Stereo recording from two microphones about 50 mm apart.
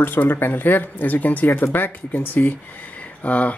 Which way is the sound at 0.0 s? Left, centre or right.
Left.